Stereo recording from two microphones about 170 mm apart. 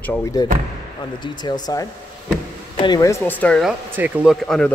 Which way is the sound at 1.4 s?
20° left (ahead or behind).